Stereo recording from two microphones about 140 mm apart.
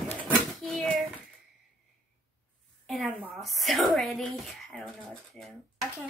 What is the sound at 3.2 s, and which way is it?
Speech, centre (ahead or behind).